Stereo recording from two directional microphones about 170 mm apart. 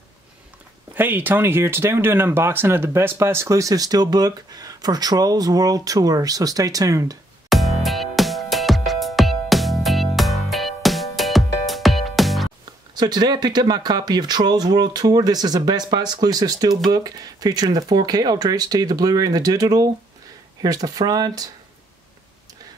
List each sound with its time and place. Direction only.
0.9 s speech: 10° right (ahead or behind)
7.4 s music: centre (ahead or behind)
12.9 s speech: 25° right (ahead or behind)